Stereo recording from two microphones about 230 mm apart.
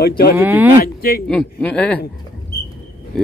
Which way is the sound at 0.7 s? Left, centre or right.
Left.